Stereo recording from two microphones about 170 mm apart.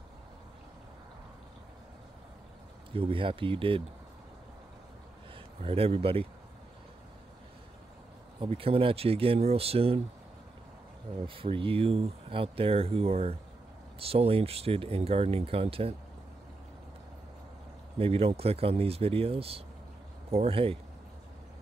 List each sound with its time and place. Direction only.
2.9 s speech: 30° right (ahead or behind)
5.6 s speech: 35° right (ahead or behind)
8.4 s speech: 35° right (ahead or behind)
11.2 s speech: 30° right (ahead or behind)
17.9 s speech: 35° right (ahead or behind)